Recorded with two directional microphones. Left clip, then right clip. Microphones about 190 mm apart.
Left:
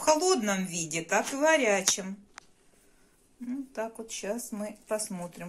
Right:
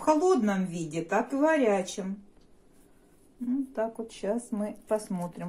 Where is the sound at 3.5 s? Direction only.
10° right (ahead or behind).